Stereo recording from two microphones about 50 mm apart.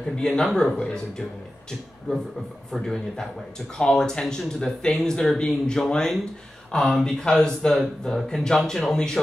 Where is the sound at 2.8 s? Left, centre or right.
Centre.